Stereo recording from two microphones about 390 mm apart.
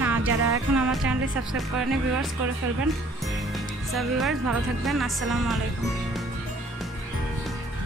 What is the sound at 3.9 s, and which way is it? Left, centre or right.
Speech, centre.